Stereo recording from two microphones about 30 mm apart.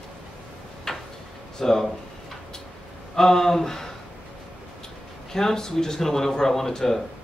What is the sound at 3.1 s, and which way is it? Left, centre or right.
Speech, centre.